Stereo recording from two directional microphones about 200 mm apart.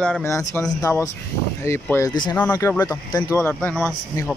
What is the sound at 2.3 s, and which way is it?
Speech, 10° left (ahead or behind).